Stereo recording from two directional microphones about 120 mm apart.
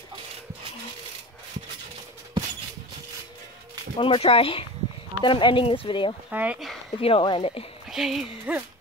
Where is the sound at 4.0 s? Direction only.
50° left (ahead or behind).